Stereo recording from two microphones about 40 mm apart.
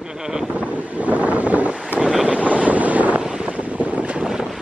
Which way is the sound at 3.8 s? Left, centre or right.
Right.